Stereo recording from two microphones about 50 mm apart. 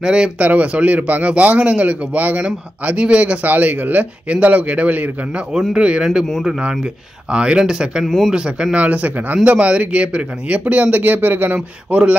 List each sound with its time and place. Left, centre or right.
0.0 s speech: centre
0.4 s a man's voice: right
5.5 s speech: centre
5.8 s a man's voice: right
8.0 s speech: centre
8.3 s a man's voice: centre; by 11.6 s right
11.9 s a man's voice: right